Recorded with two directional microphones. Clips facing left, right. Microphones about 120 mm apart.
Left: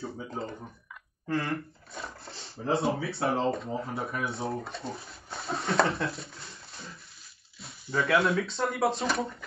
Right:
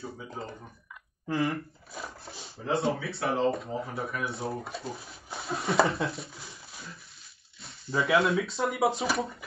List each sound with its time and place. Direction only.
0.0 s speech: 25° left (ahead or behind)
1.2 s a sound: 5° right (ahead or behind)
2.5 s speech: 25° left (ahead or behind)
3.4 s speech: centre (ahead or behind)
3.9 s speech: 25° left (ahead or behind)
4.3 s speech: centre (ahead or behind)
7.9 s speech: centre (ahead or behind)